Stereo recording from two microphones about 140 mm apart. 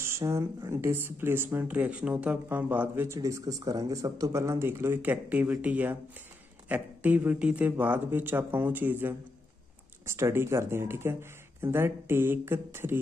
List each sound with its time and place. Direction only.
0.0 s speech: 20° right (ahead or behind)